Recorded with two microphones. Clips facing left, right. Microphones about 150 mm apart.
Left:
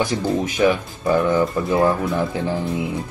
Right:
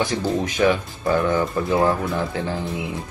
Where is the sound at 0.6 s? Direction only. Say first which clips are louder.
Left 1 dB; 5° left (ahead or behind).